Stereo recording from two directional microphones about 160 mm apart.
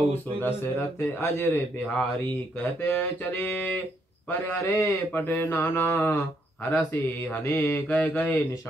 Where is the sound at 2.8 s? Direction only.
10° left (ahead or behind).